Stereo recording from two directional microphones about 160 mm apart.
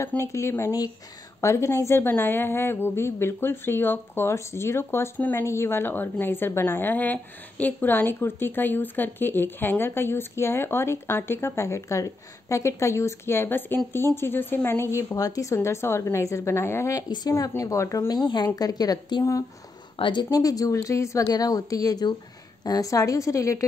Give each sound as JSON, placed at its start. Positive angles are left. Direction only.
{"t": 0.0, "sound": "a woman's voice", "side_deg": 15}